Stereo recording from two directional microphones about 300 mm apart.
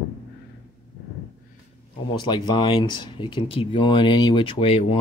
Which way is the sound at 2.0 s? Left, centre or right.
Centre.